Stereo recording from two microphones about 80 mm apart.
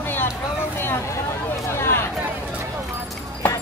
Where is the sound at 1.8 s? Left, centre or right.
Left.